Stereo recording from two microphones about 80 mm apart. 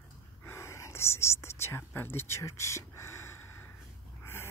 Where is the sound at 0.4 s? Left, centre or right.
Left.